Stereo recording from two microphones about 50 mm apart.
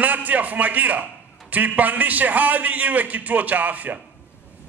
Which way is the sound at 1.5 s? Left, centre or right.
Right.